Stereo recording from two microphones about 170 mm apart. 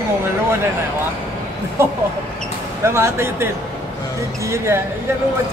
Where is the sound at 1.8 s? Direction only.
15° right (ahead or behind).